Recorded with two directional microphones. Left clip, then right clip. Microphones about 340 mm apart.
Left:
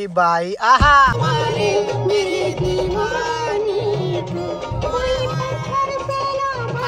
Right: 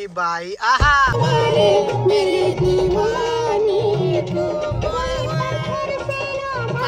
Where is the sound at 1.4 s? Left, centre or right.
Left.